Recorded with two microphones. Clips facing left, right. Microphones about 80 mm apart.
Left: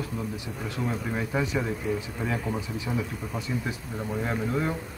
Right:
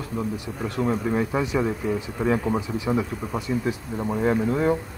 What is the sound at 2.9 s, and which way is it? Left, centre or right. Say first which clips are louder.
Speech: right 7 dB; right.